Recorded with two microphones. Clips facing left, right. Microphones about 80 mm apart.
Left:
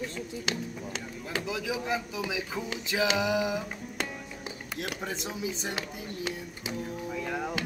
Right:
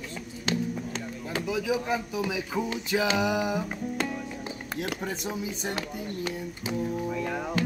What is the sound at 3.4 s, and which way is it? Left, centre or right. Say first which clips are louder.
Music: right 2 dB; right.